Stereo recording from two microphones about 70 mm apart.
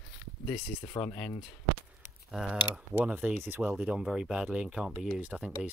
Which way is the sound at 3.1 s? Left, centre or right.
Right.